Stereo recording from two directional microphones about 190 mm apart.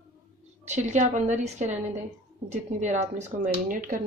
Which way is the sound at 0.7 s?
40° right (ahead or behind).